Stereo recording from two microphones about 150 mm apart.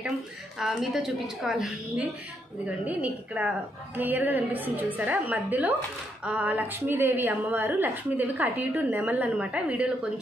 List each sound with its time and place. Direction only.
0.6 s a woman's voice: centre (ahead or behind)